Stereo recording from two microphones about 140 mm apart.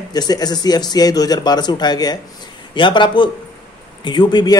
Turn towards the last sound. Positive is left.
turn(degrees=30)  # may be behind; listen again after turning